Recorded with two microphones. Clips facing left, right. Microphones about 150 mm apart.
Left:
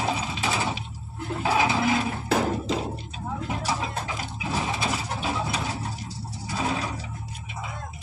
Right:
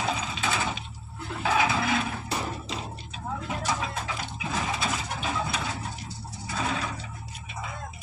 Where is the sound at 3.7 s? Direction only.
25° left (ahead or behind).